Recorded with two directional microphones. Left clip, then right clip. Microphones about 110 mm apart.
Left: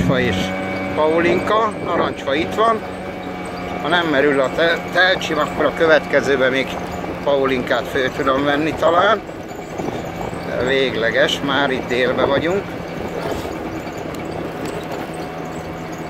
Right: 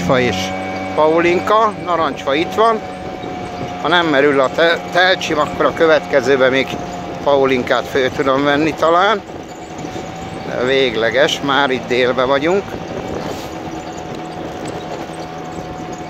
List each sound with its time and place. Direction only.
0.1 s speech: 45° right (ahead or behind)
3.8 s speech: 40° right (ahead or behind)
5.9 s speech: 30° right (ahead or behind)
10.6 s speech: 40° right (ahead or behind)
12.3 s speech: 60° right (ahead or behind)